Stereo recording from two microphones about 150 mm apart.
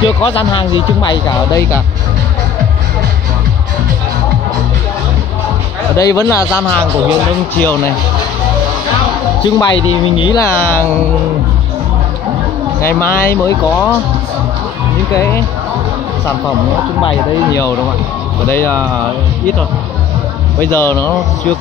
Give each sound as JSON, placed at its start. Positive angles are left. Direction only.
{"t": 0.0, "sound": "speech", "side_deg": 35}
{"t": 5.9, "sound": "speech", "side_deg": 25}
{"t": 9.4, "sound": "speech", "side_deg": 30}
{"t": 10.4, "sound": "speech", "side_deg": 15}
{"t": 12.8, "sound": "speech", "side_deg": 20}
{"t": 15.1, "sound": "speech", "side_deg": 15}
{"t": 17.5, "sound": "speech", "side_deg": 20}
{"t": 20.5, "sound": "speech", "side_deg": 15}